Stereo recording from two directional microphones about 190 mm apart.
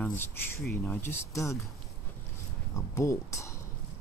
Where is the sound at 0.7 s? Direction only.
10° left (ahead or behind).